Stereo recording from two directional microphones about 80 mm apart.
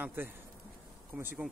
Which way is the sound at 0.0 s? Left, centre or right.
Right.